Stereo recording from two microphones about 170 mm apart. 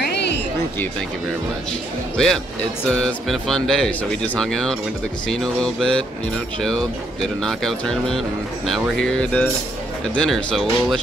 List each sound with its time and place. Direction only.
0.0 s music: 80° left
2.1 s speech: 5° left (ahead or behind)